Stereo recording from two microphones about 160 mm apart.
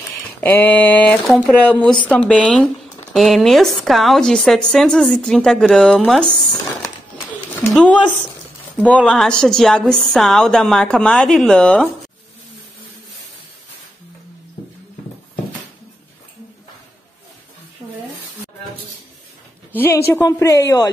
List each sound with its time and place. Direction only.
0.4 s a woman's voice: 10° left (ahead or behind)
7.7 s a woman's voice: 5° left (ahead or behind)
19.7 s a woman's voice: 15° left (ahead or behind)